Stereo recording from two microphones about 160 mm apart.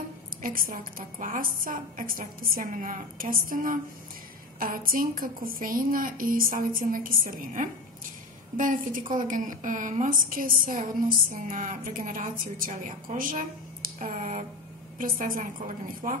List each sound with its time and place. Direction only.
0.4 s a woman's voice: 60° right (ahead or behind)